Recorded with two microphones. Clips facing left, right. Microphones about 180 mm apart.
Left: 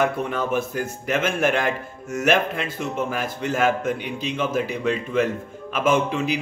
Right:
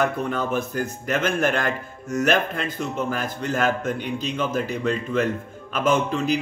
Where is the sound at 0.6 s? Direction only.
5° left (ahead or behind).